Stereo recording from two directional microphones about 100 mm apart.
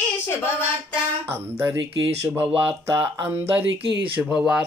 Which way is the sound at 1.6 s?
25° right (ahead or behind).